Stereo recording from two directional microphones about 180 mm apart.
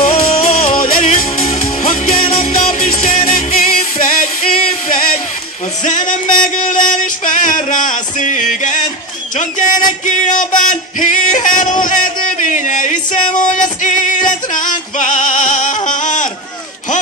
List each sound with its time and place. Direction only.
0.1 s music: 35° left (ahead or behind)
0.5 s music: 50° left (ahead or behind)
5.9 s music: 45° left (ahead or behind)